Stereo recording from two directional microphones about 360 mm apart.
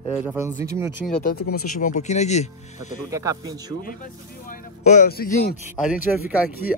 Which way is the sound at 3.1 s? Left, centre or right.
Centre.